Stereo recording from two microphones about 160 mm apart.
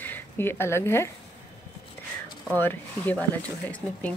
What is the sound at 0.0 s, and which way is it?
Speech, 15° left (ahead or behind).